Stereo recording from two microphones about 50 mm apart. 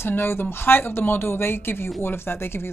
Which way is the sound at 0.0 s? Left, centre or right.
Left.